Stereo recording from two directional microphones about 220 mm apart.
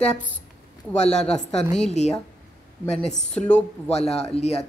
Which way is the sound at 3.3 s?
5° left (ahead or behind).